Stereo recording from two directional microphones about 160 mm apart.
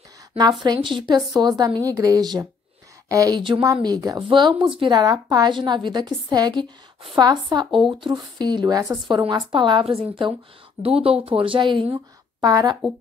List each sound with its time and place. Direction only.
0.4 s a woman's voice: 25° right (ahead or behind)